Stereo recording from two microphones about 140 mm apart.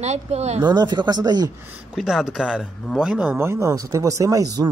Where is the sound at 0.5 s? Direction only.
30° right (ahead or behind).